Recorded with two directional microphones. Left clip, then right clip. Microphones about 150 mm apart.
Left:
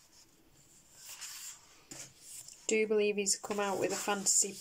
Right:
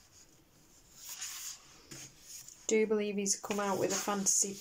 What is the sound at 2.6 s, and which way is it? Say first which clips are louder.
Speech: left 1 dB; 10° left (ahead or behind).